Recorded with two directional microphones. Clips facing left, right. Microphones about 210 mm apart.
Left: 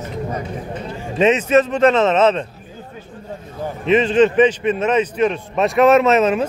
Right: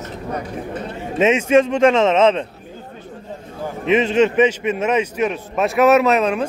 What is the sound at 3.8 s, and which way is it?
A man's voice, 10° right (ahead or behind).